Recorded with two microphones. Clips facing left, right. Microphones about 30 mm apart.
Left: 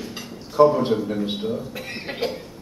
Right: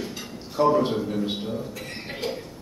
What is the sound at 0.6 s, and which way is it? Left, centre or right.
Speech, left.